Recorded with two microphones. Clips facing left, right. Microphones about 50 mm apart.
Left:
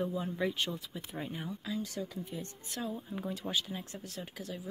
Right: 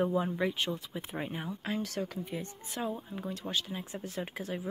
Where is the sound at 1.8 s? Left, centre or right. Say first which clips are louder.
Right 3 dB; right.